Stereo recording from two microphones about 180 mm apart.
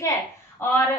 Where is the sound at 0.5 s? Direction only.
10° left (ahead or behind).